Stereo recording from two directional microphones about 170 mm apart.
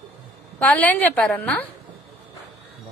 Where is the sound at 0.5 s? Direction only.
10° left (ahead or behind).